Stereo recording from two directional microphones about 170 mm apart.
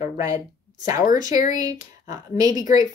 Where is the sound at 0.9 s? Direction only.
50° left (ahead or behind).